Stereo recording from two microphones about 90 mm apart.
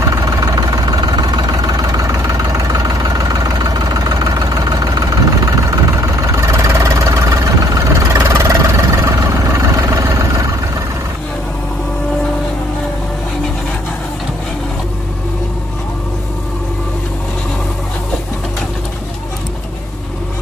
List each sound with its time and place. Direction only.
0.1 s vehicle: 45° right (ahead or behind)